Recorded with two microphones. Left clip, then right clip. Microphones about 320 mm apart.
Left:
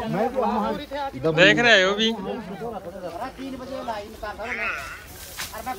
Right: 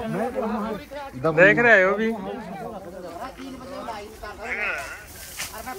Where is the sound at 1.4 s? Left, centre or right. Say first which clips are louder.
Right 1 dB; centre.